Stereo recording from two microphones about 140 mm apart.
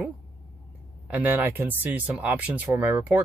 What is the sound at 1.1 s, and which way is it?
Speech, 10° right (ahead or behind).